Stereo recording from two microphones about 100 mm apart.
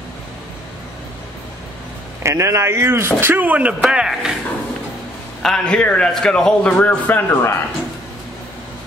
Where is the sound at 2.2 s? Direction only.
30° right (ahead or behind); by 4.3 s 5° right (ahead or behind).